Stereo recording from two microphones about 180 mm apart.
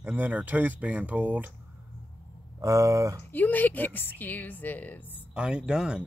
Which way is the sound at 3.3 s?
10° left (ahead or behind).